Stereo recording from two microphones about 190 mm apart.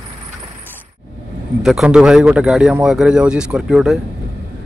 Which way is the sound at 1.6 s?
Centre (ahead or behind).